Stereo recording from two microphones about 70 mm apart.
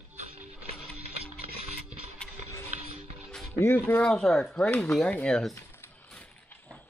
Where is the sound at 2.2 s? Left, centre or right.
Centre.